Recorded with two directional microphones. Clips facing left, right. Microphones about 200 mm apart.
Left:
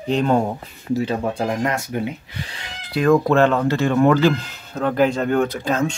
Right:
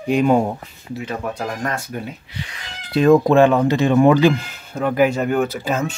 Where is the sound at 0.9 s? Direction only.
30° left (ahead or behind).